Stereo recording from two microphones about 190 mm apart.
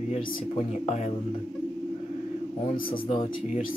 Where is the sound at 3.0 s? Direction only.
30° left (ahead or behind).